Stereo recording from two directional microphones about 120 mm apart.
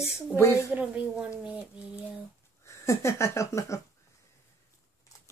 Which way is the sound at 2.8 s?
25° left (ahead or behind).